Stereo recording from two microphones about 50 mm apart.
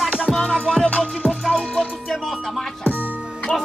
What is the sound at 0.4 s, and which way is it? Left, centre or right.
Music, left.